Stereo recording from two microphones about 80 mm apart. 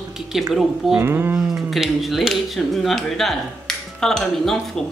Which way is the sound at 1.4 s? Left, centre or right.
Centre.